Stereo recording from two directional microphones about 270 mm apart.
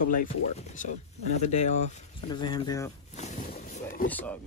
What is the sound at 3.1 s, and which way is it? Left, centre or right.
Boat, left.